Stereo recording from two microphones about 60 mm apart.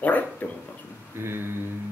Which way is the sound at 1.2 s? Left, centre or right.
Right.